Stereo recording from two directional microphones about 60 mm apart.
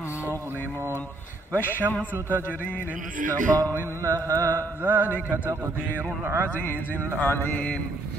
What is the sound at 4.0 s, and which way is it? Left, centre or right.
Mantra, right.